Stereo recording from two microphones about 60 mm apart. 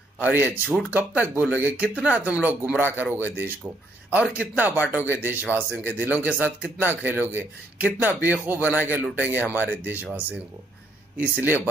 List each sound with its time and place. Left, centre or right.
0.3 s speech: right
11.1 s speech: right